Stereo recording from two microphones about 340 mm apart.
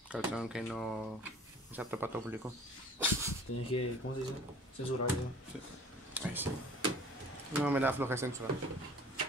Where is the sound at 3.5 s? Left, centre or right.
Left.